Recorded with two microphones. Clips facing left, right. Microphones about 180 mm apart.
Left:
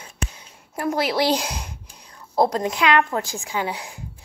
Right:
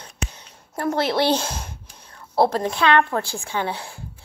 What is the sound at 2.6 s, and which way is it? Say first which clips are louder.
A woman's voice: right 1 dB; 15° left (ahead or behind).